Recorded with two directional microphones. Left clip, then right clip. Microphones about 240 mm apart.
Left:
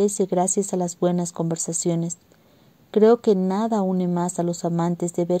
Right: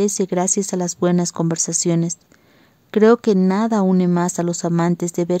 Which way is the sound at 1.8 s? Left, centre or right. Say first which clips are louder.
Right 4 dB; right.